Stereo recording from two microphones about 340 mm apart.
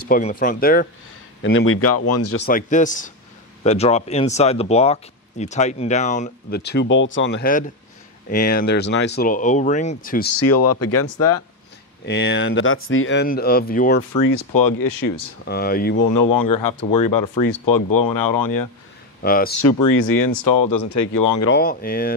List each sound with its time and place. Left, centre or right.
0.1 s speech: left
2.3 s speech: left
10.4 s speech: left
12.1 s speech: left
14.1 s speech: left
15.4 s speech: left
16.1 s speech: left
19.2 s speech: left
19.8 s speech: left
21.5 s speech: left